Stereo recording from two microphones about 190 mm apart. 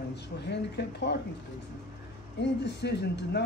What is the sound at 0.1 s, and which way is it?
Speech, 65° left (ahead or behind).